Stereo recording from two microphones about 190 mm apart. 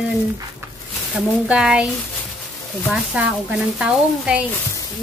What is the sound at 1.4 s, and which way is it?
Speech, 5° right (ahead or behind).